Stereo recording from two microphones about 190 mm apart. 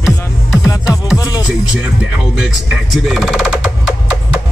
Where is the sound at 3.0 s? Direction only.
Centre (ahead or behind).